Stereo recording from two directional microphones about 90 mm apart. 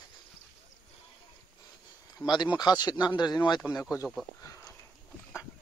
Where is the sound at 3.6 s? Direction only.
5° left (ahead or behind).